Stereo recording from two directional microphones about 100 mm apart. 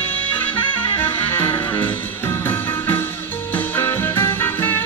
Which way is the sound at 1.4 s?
55° left (ahead or behind).